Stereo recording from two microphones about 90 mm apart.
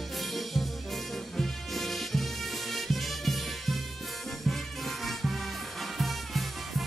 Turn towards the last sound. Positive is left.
turn(degrees=0)  # may be behind; listen again after turning